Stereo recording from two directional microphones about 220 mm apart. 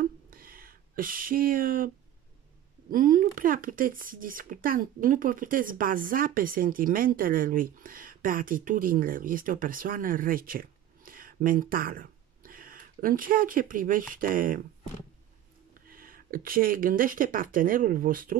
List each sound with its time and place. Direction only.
0.0 s a sound: 40° right (ahead or behind)
2.9 s speech: 40° right (ahead or behind)
15.9 s speech: 40° right (ahead or behind)